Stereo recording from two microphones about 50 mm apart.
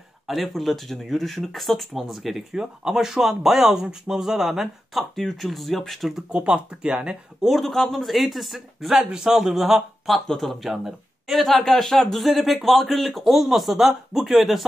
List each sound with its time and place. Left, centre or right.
0.3 s speech: centre
6.3 s speech: right
7.4 s speech: centre
10.3 s speech: centre